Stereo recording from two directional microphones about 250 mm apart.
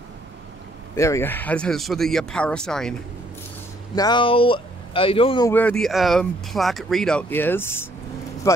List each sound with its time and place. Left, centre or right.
0.9 s speech: centre
3.9 s speech: centre
5.5 s a man's voice: centre